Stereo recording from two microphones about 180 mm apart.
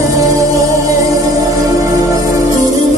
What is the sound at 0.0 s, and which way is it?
Music, 20° right (ahead or behind).